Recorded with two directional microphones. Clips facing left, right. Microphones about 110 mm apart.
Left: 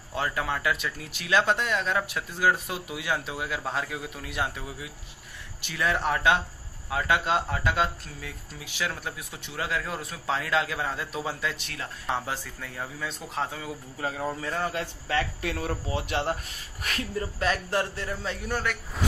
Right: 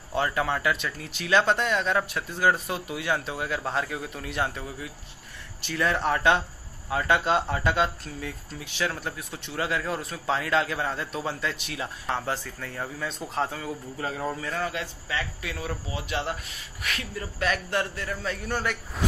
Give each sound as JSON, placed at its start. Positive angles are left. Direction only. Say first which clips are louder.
{"t": 0.1, "sound": "a man's voice", "louder": "right 3 dB", "side_deg": 0}
{"t": 14.7, "sound": "speech", "louder": "left 2 dB", "side_deg": 50}
{"t": 16.8, "sound": "a man's voice", "louder": "left 3 dB", "side_deg": 35}
{"t": 18.5, "sound": "speech", "louder": "even", "side_deg": 0}